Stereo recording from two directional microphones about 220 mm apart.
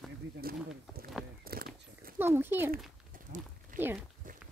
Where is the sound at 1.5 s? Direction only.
45° right (ahead or behind).